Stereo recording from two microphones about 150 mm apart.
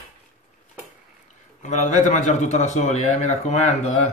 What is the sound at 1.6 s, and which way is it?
A man's voice, 50° left (ahead or behind).